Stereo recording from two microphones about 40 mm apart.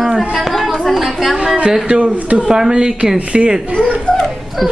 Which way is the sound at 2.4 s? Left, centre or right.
Centre.